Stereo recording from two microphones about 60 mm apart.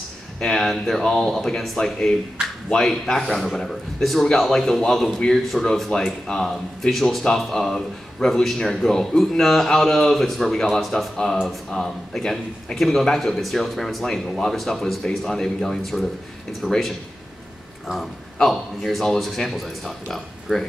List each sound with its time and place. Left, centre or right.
0.4 s a man's voice: centre
5.9 s a man's voice: centre
17.9 s a man's voice: centre